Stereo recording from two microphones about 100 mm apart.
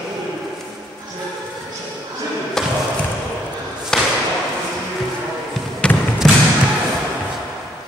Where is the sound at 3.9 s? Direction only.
5° left (ahead or behind).